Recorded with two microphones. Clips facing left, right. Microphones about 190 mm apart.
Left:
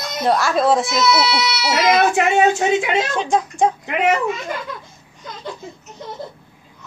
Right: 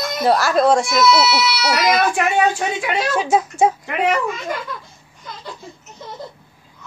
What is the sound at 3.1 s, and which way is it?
Speech, 5° right (ahead or behind).